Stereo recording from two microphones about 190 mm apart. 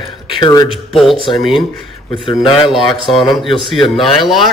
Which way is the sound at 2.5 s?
Centre (ahead or behind).